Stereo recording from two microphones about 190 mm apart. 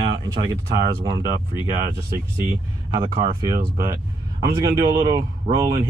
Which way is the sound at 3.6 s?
50° right (ahead or behind).